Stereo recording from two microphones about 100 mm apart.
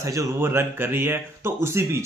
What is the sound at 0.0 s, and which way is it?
A man's voice, 30° right (ahead or behind).